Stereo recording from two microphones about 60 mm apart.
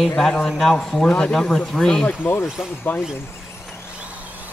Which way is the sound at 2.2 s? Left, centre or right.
Left.